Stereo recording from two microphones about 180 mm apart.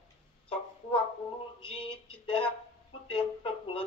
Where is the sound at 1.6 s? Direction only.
30° left (ahead or behind).